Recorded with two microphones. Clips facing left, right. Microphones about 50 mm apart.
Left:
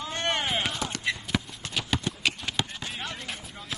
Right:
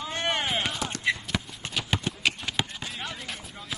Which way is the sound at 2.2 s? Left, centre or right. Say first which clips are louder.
Right 1 dB; centre.